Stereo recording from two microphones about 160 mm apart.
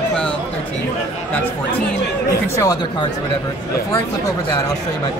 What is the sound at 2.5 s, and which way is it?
Speech, 20° left (ahead or behind).